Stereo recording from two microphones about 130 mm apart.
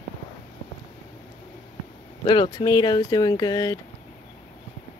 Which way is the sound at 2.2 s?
35° left (ahead or behind).